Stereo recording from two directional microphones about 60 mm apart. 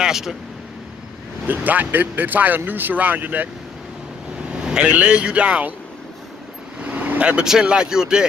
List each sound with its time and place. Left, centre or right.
0.0 s speech: centre
1.5 s speech: right
4.5 s speech: centre
6.8 s vehicle: right
7.4 s speech: centre